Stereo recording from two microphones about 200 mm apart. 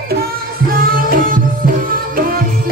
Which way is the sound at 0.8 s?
45° right (ahead or behind).